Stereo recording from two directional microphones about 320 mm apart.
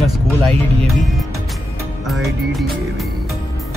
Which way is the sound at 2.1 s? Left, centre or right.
Centre.